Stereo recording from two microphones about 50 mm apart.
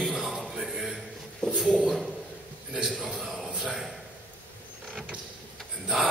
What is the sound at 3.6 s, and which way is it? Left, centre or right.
Speech, centre.